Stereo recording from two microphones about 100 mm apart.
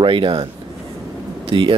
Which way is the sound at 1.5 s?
70° right (ahead or behind).